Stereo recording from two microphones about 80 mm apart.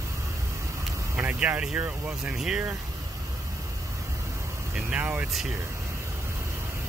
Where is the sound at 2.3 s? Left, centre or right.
Centre.